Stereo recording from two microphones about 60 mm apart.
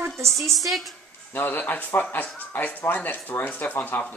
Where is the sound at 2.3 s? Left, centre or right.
Left.